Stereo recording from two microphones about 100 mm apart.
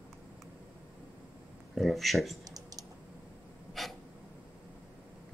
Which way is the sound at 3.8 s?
Centre (ahead or behind).